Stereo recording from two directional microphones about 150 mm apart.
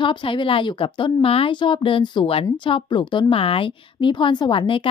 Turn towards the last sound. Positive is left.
turn(degrees=35)  # may be behind; listen again after turning